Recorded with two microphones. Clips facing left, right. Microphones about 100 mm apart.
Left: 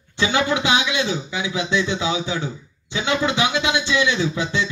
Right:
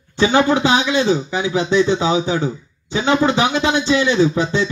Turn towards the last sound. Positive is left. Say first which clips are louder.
# right 6 dB
turn(degrees=-45)  # may be behind; listen again after turning